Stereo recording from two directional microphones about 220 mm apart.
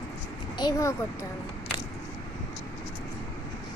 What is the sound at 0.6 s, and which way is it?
Speech, 15° left (ahead or behind).